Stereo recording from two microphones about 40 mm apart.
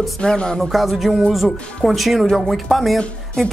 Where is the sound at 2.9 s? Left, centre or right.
Centre.